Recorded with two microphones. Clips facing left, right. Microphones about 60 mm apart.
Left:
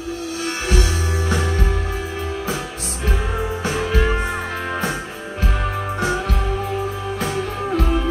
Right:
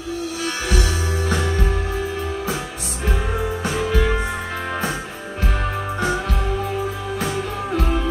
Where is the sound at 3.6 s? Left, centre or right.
Left.